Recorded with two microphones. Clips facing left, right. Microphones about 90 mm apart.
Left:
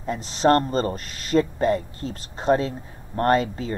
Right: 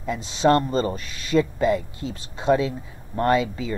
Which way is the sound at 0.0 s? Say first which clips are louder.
Even; 40° left (ahead or behind).